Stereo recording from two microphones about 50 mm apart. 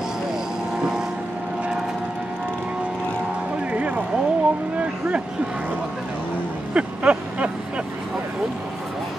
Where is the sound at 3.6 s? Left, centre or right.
Right.